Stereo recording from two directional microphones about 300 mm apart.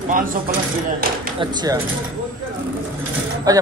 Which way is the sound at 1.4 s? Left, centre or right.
Centre.